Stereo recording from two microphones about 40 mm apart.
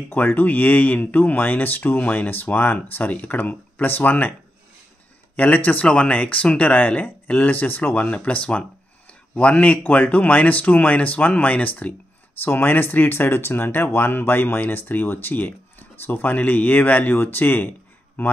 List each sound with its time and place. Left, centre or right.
0.1 s speech: left
5.3 s speech: left
5.9 s speech: left
7.9 s speech: left
12.4 s speech: left
17.1 s speech: left